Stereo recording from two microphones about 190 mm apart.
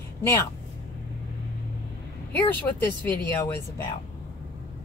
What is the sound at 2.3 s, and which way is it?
Speech, 10° left (ahead or behind).